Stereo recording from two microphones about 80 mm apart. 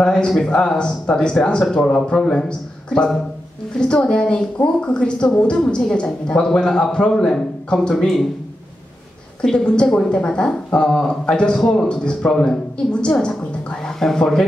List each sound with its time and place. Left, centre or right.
0.0 s speech: centre
9.4 s speech: centre